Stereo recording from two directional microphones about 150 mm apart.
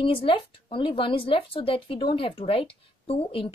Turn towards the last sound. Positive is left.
turn(degrees=40)  # may be behind; listen again after turning